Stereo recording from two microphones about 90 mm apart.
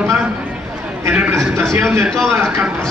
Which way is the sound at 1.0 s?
20° right (ahead or behind).